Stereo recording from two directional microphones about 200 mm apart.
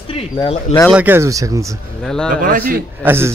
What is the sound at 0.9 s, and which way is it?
Speech, 10° right (ahead or behind).